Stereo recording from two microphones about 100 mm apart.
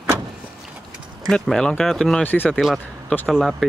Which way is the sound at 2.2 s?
20° left (ahead or behind).